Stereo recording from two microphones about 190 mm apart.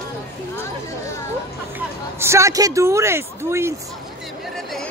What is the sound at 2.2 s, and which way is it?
Speech, 15° right (ahead or behind).